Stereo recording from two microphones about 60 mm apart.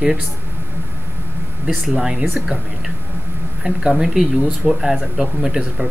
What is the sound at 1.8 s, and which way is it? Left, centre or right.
Speech, centre.